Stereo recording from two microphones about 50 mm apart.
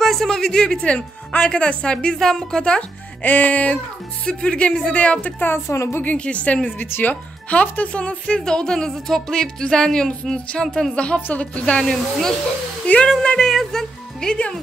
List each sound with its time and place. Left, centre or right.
0.0 s speech: centre
3.2 s music: left
4.3 s speech: centre
5.7 s a woman's voice: left
6.0 s speech: left
6.8 s music: left
7.4 s speech: left; by 11.1 s centre
11.1 s speech: left
11.8 s speech: centre
12.9 s speech: left
13.2 s speech: centre
13.5 s speech: centre